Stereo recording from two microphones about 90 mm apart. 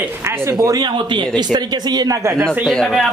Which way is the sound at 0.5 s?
40° right (ahead or behind).